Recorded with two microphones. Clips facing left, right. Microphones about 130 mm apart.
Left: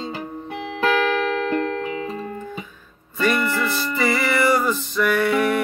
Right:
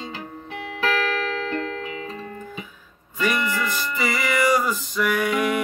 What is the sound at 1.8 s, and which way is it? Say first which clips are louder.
Music: left 5 dB; 35° left (ahead or behind).